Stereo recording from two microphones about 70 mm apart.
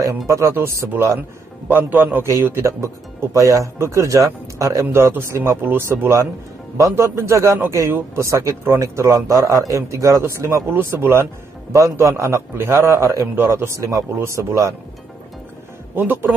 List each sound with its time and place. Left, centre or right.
0.0 s a man's voice: right
1.7 s a man's voice: right
2.2 s a man's voice: right
5.6 s a man's voice: right
6.8 s a man's voice: right
10.7 s speech: right
11.7 s a man's voice: right
14.1 s a man's voice: right